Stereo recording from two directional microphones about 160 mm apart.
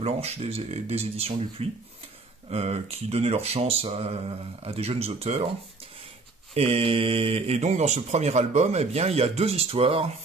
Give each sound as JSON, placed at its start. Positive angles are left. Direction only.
{"t": 0.0, "sound": "speech", "side_deg": -40}
{"t": 6.5, "sound": "speech", "side_deg": -40}